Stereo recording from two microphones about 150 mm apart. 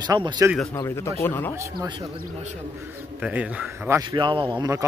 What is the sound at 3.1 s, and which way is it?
Speech, 5° right (ahead or behind).